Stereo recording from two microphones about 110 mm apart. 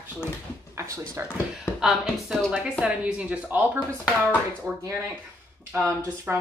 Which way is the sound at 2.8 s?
10° right (ahead or behind).